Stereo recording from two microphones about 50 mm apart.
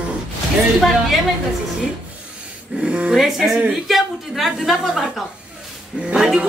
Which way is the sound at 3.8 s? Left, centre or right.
Centre.